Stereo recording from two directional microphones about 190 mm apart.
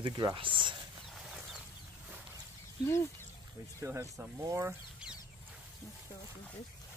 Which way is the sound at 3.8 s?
15° right (ahead or behind).